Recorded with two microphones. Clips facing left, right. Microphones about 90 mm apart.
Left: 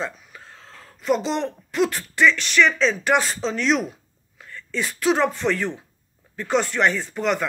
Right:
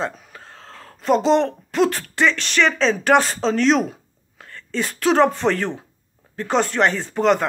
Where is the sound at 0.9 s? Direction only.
35° right (ahead or behind); by 4.7 s 50° right (ahead or behind).